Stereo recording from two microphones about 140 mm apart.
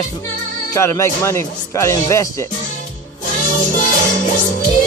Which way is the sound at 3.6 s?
65° left (ahead or behind).